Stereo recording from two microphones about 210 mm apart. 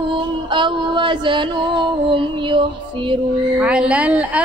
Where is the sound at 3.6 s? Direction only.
5° right (ahead or behind).